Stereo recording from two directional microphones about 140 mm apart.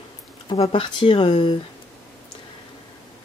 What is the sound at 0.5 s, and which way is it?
Speech, 40° left (ahead or behind).